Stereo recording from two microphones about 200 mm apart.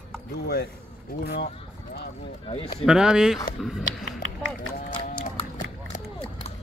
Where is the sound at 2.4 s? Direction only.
30° left (ahead or behind).